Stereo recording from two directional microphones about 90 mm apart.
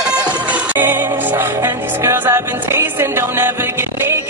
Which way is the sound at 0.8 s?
25° right (ahead or behind).